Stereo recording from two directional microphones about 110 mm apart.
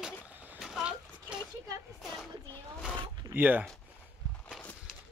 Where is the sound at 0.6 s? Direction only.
5° right (ahead or behind).